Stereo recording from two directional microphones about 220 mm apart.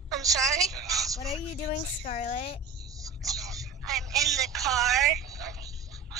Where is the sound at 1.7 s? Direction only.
35° left (ahead or behind).